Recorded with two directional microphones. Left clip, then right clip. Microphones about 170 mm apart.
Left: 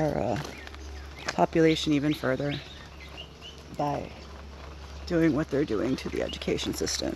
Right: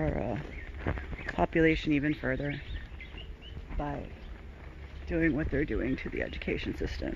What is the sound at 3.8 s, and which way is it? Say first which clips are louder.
Speech: left 8 dB; 30° left (ahead or behind).